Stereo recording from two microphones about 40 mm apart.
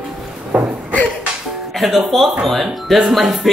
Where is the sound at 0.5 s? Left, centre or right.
Right.